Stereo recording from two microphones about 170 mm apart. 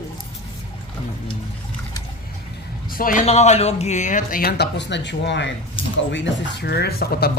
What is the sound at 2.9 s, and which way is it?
Speech, 55° left (ahead or behind).